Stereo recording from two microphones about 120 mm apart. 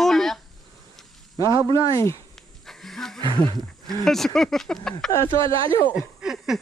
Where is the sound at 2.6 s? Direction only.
5° left (ahead or behind).